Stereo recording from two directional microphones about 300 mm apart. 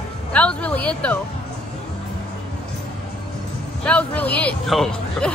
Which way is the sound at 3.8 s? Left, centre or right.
Centre.